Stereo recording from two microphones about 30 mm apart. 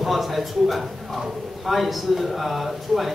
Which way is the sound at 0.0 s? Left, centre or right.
Centre.